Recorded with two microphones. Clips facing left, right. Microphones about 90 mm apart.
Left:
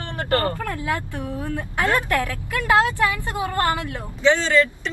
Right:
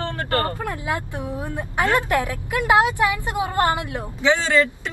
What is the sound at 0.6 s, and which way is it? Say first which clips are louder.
A man's voice: even; 20° right (ahead or behind).